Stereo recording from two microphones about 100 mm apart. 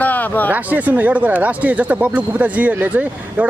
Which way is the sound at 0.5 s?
15° right (ahead or behind).